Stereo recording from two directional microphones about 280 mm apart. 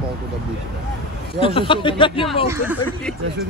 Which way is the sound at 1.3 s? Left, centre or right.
Centre.